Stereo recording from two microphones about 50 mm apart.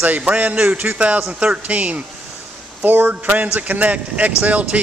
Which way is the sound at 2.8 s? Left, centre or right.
Right.